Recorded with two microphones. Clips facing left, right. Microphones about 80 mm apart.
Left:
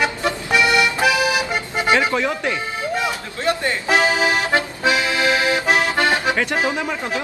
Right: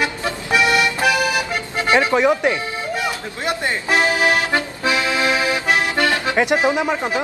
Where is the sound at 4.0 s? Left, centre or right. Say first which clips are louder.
Right 1 dB; left.